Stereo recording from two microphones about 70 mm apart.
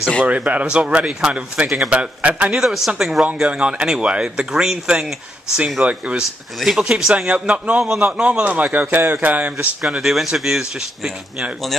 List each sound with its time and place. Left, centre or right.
0.2 s speech: centre
2.6 s speech: centre
3.3 s speech: centre
9.8 s speech: centre